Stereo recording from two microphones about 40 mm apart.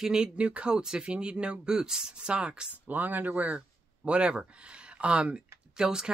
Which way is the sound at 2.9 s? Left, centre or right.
Right.